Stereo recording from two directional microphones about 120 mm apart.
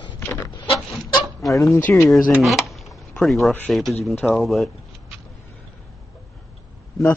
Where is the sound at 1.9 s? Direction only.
15° left (ahead or behind).